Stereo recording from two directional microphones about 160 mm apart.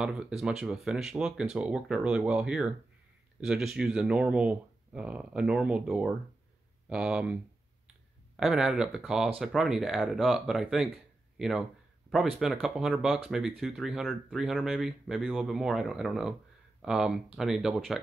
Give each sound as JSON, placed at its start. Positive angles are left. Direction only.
{"t": 0.0, "sound": "speech", "side_deg": -5}
{"t": 8.4, "sound": "speech", "side_deg": -5}